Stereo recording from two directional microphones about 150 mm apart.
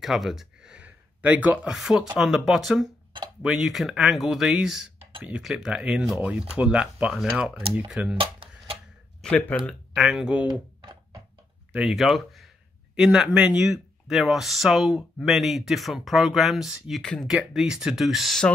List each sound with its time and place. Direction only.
0.0 s speech: centre (ahead or behind)
8.2 s tick-tock: 35° right (ahead or behind)
9.2 s speech: 10° left (ahead or behind)
9.7 s speech: centre (ahead or behind)
11.7 s speech: centre (ahead or behind)